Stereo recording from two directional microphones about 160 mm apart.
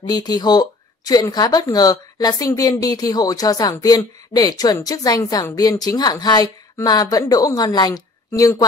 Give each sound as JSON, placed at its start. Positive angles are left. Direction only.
{"t": 0.1, "sound": "speech", "side_deg": 25}